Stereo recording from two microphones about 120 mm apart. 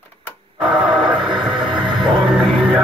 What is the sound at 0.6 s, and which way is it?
Music, 10° right (ahead or behind).